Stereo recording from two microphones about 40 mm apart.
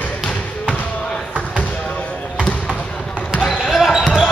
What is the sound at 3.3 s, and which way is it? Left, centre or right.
Basketball bounce, left.